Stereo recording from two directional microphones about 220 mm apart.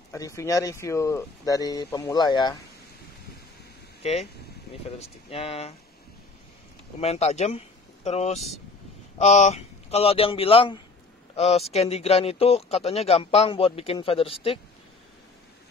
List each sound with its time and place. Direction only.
0.1 s speech: 15° left (ahead or behind)
4.0 s speech: 25° left (ahead or behind)
7.0 s speech: 30° left (ahead or behind)